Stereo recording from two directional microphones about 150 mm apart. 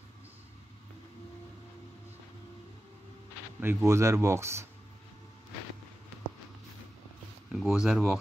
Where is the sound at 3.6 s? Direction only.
15° right (ahead or behind).